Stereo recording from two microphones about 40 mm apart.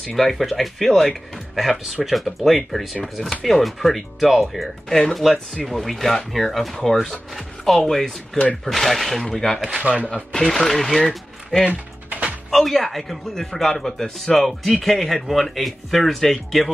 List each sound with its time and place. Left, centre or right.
0.1 s speech: centre
4.8 s speech: centre
9.6 s speech: right
10.0 s speech: left
10.4 s speech: centre
11.6 s typing: right
12.4 s speech: centre